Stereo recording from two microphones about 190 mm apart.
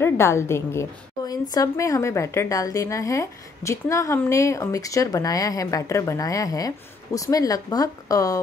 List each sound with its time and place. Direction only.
0.0 s a woman's voice: 15° left (ahead or behind)